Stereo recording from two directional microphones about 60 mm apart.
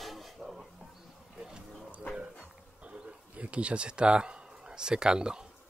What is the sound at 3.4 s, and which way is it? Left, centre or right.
Speech, right.